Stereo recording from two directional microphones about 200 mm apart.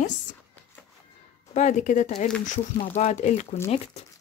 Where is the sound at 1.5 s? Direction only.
35° left (ahead or behind).